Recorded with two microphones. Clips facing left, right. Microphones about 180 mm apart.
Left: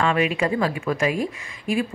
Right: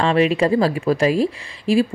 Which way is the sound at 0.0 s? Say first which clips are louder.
Right 5 dB; 35° right (ahead or behind).